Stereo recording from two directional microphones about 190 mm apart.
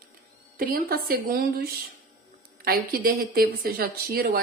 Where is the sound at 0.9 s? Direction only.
55° right (ahead or behind).